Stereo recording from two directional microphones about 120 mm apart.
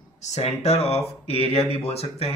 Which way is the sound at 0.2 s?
65° left (ahead or behind).